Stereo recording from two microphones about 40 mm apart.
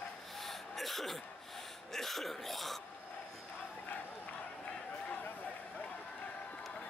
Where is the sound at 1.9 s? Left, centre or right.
Centre.